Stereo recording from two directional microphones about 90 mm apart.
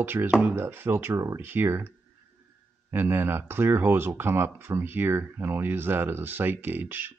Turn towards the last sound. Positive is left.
turn(degrees=-25)  # may be behind; listen again after turning